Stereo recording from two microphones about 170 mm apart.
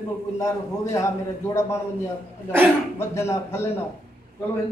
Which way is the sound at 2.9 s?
15° left (ahead or behind).